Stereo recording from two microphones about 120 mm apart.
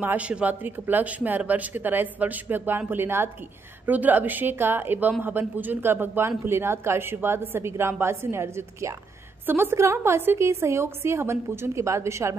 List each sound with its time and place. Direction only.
0.0 s a woman's voice: 10° right (ahead or behind)